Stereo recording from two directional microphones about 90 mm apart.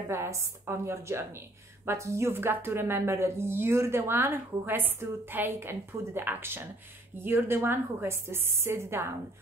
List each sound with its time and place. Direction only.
0.1 s a woman's voice: 30° right (ahead or behind)